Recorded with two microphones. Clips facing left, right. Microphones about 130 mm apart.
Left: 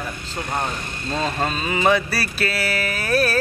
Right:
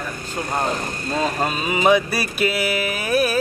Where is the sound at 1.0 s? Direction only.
10° right (ahead or behind).